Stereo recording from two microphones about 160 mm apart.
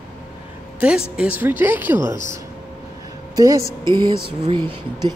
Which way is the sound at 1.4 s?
10° right (ahead or behind).